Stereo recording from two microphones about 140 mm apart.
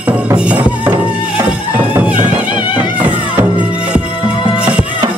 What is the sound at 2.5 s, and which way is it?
Music, 10° right (ahead or behind).